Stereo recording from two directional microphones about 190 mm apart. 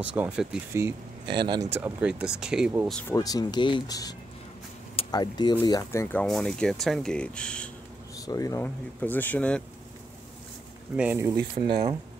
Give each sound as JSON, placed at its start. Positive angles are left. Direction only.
{"t": 0.0, "sound": "speech", "side_deg": -5}
{"t": 0.7, "sound": "speech", "side_deg": -20}
{"t": 1.7, "sound": "speech", "side_deg": -10}
{"t": 2.9, "sound": "speech", "side_deg": 5}
{"t": 3.2, "sound": "speech", "side_deg": 20}
{"t": 8.3, "sound": "speech", "side_deg": 15}
{"t": 11.0, "sound": "speech", "side_deg": -10}